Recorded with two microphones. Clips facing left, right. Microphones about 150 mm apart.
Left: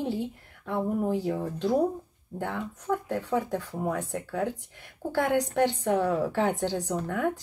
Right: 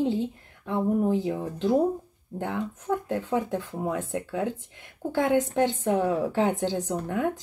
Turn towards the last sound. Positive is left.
turn(degrees=-20)  # may be behind; listen again after turning